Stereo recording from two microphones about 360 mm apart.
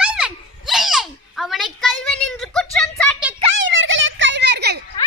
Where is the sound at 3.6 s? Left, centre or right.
Right.